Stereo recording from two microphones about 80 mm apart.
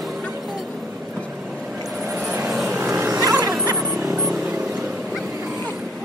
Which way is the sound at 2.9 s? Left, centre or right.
Right.